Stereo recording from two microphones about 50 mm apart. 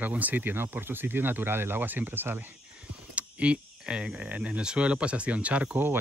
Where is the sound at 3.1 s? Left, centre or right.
Right.